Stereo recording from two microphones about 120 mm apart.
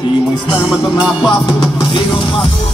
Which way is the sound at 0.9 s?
5° right (ahead or behind).